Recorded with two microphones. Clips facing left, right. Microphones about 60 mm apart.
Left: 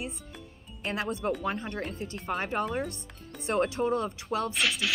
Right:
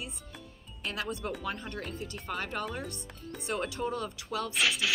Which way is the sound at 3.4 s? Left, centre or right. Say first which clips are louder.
Left 6 dB; left.